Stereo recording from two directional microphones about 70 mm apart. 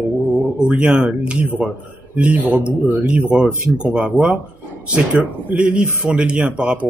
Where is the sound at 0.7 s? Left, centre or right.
Centre.